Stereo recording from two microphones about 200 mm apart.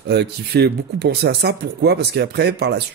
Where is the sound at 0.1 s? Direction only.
55° right (ahead or behind).